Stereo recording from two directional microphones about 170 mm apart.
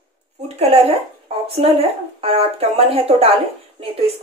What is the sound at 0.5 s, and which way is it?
Speech, 35° right (ahead or behind).